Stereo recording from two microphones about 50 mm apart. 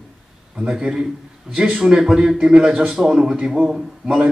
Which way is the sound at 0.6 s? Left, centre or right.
Centre.